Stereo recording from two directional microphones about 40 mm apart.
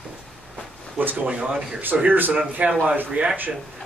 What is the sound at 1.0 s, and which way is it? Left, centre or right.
Speech, right.